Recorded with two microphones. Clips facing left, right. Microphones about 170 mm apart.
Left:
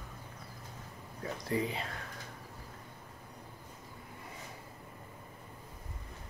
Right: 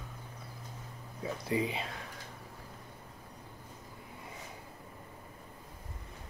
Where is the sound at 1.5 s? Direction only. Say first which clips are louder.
Right 1 dB; 15° right (ahead or behind).